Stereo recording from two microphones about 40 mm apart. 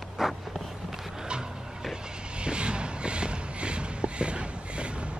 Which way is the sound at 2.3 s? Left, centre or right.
Right.